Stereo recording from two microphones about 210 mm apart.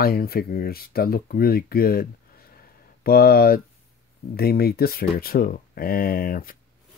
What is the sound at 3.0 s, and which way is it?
Speech, 45° left (ahead or behind).